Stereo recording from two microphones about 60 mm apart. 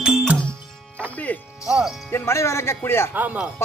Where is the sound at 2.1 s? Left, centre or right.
Left.